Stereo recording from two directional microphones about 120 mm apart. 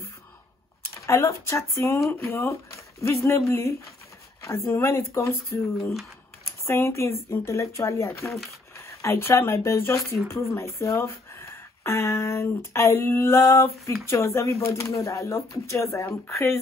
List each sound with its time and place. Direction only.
1.0 s speech: 25° left (ahead or behind)
6.6 s speech: 25° left (ahead or behind)
8.3 s speech: centre (ahead or behind)
8.7 s speech: 25° left (ahead or behind)